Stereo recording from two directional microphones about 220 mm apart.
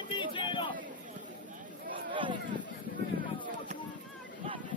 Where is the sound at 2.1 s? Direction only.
20° right (ahead or behind).